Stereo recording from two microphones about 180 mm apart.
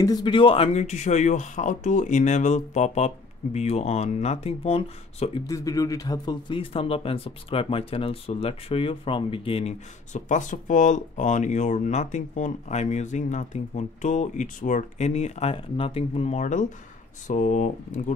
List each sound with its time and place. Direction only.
0.0 s speech: 25° left (ahead or behind)
5.5 s speech: 20° left (ahead or behind); by 18.1 s 45° left (ahead or behind)